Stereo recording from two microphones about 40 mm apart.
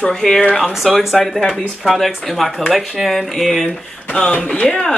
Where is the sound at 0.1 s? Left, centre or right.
Centre.